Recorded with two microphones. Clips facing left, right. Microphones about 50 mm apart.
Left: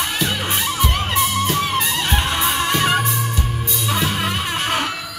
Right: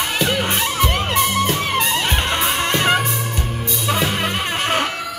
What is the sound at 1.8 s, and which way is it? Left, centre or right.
Music, centre.